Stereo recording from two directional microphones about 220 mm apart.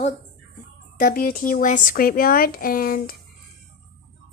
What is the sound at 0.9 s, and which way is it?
Speech, 40° left (ahead or behind).